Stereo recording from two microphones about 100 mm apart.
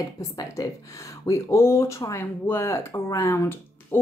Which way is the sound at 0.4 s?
30° left (ahead or behind).